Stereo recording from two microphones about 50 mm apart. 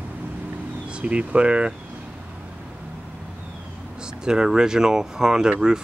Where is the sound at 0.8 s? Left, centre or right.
Right.